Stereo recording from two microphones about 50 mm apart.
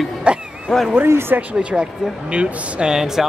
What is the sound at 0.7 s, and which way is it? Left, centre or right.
Speech, centre.